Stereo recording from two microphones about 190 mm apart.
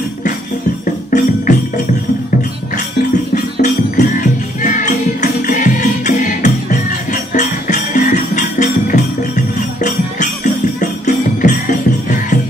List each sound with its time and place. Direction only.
1.1 s music: 40° left (ahead or behind)
3.6 s music: 40° left (ahead or behind)